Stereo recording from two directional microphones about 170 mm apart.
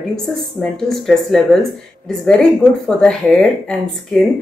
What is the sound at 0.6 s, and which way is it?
Speech, centre (ahead or behind).